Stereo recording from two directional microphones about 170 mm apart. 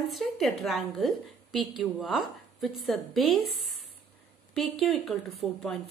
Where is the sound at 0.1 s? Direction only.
Centre (ahead or behind).